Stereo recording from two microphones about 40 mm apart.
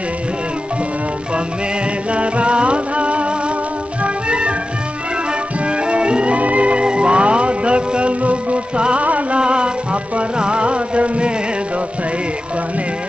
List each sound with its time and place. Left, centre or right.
2.1 s music: right
5.7 s music: right
9.4 s music: right
10.1 s a sound: right